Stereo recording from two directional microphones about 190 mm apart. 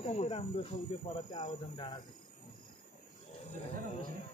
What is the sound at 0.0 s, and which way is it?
Speech, 35° left (ahead or behind).